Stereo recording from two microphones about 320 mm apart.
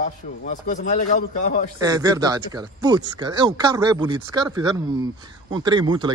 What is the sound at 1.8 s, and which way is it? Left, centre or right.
Speech, centre.